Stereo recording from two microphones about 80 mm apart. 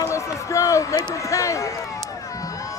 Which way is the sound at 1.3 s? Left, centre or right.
Left.